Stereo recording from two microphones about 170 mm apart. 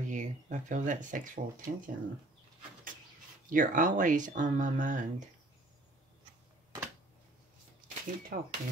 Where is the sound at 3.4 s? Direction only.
50° right (ahead or behind).